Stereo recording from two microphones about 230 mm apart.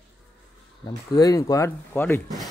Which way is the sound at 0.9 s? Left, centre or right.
Centre.